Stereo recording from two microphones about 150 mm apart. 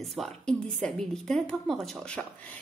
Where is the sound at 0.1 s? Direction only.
Centre (ahead or behind).